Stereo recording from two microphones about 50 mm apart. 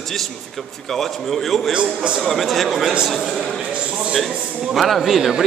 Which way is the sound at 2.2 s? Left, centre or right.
Centre.